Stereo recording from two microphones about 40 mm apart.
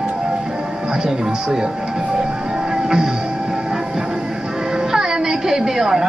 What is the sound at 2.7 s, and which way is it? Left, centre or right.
Music, centre.